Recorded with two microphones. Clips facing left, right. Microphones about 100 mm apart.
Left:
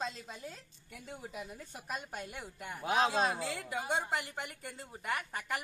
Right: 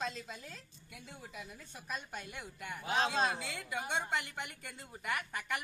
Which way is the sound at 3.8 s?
25° left (ahead or behind).